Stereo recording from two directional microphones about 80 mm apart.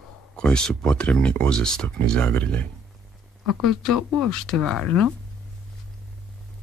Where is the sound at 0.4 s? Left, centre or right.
Centre.